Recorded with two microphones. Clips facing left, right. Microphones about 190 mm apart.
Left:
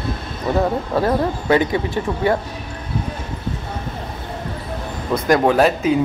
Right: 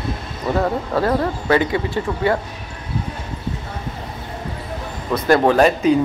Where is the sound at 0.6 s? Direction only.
15° left (ahead or behind).